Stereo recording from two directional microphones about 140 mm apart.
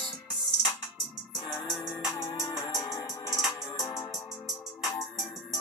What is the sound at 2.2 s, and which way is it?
Music, 20° left (ahead or behind).